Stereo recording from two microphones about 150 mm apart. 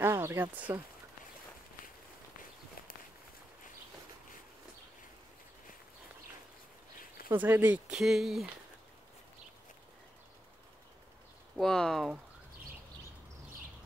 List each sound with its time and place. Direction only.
0.0 s speech: 15° right (ahead or behind)
7.4 s speech: 15° right (ahead or behind)
11.5 s speech: 5° left (ahead or behind)